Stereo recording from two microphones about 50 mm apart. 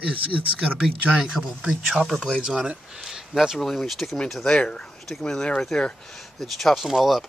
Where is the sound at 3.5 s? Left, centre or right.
Centre.